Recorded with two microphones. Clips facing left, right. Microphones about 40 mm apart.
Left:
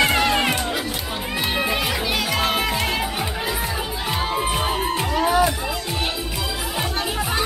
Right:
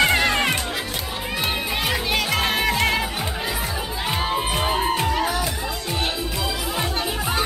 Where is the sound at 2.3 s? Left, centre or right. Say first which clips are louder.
Right 1 dB; centre.